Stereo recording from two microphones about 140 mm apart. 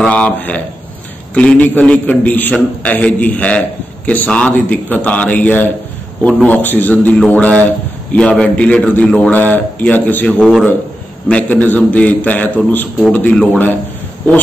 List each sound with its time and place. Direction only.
0.0 s a man's voice: 10° left (ahead or behind)